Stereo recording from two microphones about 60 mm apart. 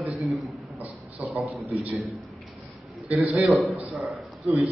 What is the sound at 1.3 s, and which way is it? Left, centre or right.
Speech, right.